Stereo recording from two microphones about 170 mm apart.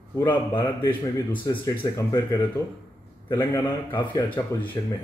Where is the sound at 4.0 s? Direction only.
30° left (ahead or behind).